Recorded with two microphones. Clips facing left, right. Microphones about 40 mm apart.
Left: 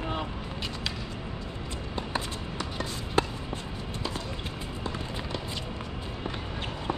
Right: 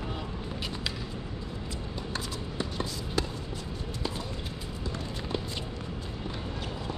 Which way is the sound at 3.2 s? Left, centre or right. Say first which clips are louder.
Left 6 dB; left.